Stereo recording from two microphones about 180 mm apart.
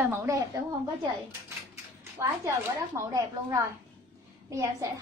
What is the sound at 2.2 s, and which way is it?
A woman's voice, 15° right (ahead or behind).